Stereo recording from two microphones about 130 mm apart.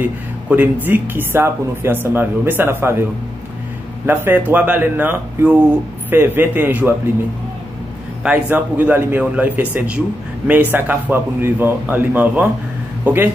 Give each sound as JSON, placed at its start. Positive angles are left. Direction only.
{"t": 0.0, "sound": "a man's voice", "side_deg": -15}
{"t": 8.2, "sound": "a man's voice", "side_deg": -10}